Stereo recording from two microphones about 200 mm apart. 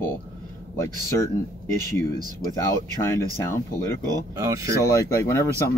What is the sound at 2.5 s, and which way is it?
Speech, 10° left (ahead or behind).